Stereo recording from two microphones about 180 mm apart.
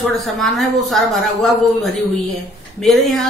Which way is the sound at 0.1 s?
Centre (ahead or behind).